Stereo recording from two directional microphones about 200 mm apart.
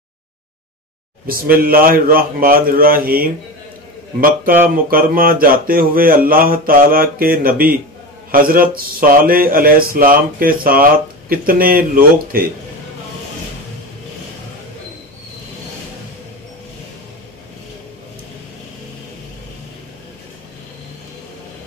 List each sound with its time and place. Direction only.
1.2 s speech: 45° right (ahead or behind)
4.9 s speech: 45° right (ahead or behind)